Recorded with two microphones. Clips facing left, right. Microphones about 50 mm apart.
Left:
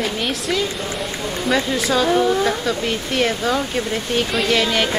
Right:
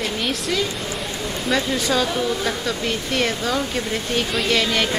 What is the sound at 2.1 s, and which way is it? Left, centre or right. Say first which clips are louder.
Speech: left 6 dB; left.